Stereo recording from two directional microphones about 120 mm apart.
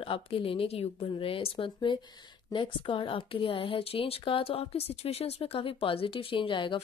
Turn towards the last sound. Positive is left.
turn(degrees=45)  # may be behind; listen again after turning